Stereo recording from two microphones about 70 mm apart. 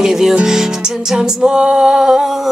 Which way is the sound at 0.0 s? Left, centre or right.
Centre.